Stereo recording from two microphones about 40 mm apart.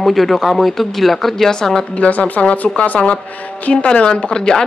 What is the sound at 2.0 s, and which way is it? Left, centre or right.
Speech, left.